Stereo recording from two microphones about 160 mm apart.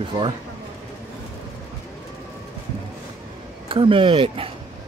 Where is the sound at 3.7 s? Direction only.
35° right (ahead or behind).